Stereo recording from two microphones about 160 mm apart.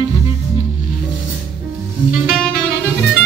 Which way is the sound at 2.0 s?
5° right (ahead or behind).